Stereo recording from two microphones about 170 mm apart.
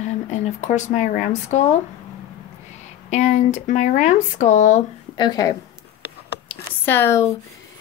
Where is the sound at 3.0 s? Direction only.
45° left (ahead or behind).